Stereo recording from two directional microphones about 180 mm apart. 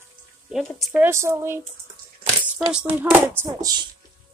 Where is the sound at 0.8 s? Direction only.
10° right (ahead or behind).